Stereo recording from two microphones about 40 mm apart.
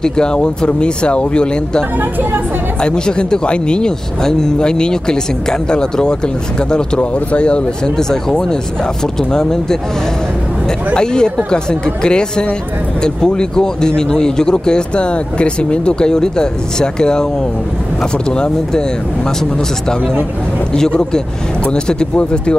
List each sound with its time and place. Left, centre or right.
0.0 s speech: left
8.1 s speech: centre
11.0 s speech: centre
18.3 s speech: left
20.7 s speech: centre